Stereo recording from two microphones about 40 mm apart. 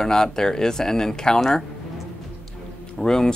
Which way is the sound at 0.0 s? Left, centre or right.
Centre.